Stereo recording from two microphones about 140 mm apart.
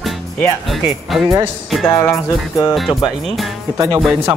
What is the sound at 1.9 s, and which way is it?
Music, 20° left (ahead or behind).